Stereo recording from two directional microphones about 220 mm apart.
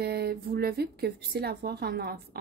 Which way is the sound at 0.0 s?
45° right (ahead or behind).